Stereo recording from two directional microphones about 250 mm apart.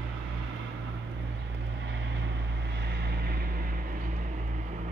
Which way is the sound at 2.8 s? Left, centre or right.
Right.